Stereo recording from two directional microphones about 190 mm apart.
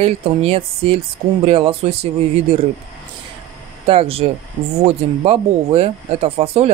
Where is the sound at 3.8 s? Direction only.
30° right (ahead or behind).